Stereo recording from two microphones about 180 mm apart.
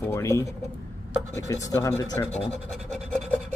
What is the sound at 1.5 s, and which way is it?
Speech, 20° left (ahead or behind).